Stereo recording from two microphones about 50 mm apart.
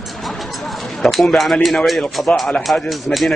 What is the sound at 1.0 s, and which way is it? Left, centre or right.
Speech, centre.